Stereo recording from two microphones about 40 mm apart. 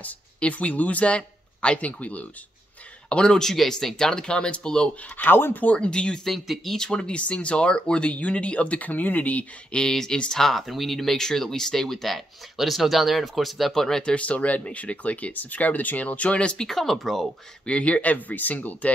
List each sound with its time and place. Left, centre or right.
0.4 s a man's voice: left
3.5 s speech: centre
5.1 s speech: left
5.6 s speech: left
5.9 s speech: left
6.2 s speech: centre
6.9 s speech: left
9.7 s speech: centre
14.0 s speech: left
16.6 s speech: centre
17.6 s speech: left